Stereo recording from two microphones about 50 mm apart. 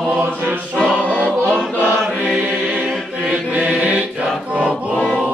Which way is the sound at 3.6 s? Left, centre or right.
Right.